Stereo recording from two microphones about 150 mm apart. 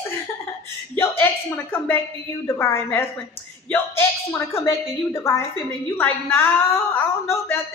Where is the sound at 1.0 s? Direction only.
15° left (ahead or behind).